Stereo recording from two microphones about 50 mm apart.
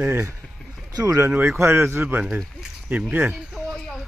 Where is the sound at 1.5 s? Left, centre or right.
Right.